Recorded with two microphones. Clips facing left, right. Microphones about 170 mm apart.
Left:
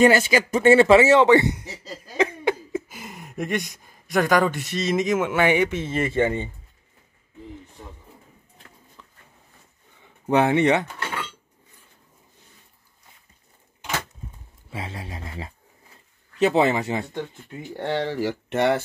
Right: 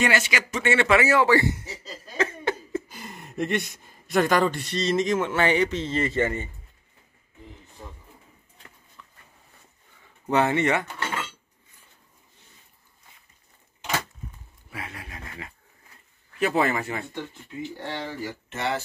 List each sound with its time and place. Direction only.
0.0 s speech: 35° left (ahead or behind); by 6.5 s 15° left (ahead or behind)
10.2 s speech: 15° left (ahead or behind)
13.7 s a sound: 5° left (ahead or behind)
14.7 s speech: 30° left (ahead or behind)
17.1 s speech: 50° left (ahead or behind)